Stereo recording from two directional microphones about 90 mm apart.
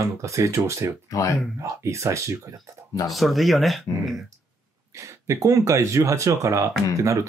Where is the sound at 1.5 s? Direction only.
35° right (ahead or behind).